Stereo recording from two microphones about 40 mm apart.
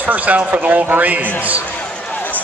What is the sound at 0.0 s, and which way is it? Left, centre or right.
A man's voice, right.